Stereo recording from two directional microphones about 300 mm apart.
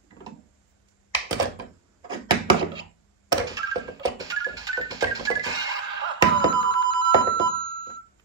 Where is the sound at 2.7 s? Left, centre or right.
Centre.